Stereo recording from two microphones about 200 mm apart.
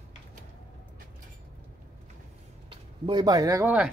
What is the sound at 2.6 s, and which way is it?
Speech, 25° right (ahead or behind).